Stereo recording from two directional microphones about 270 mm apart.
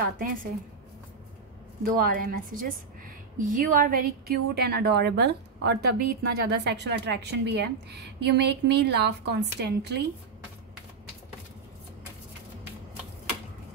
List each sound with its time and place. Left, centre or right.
0.0 s a woman's voice: right
2.0 s a woman's voice: right
5.8 s a woman's voice: right
6.4 s a woman's voice: right